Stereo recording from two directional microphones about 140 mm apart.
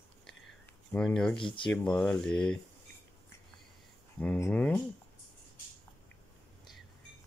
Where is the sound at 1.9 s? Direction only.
5° left (ahead or behind).